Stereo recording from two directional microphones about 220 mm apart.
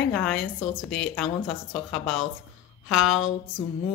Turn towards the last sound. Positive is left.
turn(degrees=0)  # may be behind; listen again after turning